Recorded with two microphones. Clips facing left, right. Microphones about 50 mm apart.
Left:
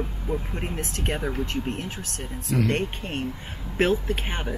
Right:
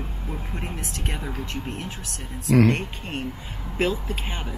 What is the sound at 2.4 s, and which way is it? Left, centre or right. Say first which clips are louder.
Speech: right 7 dB; right.